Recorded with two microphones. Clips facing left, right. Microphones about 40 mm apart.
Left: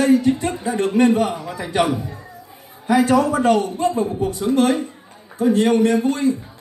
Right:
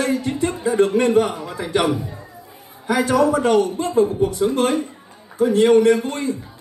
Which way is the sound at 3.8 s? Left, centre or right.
Right.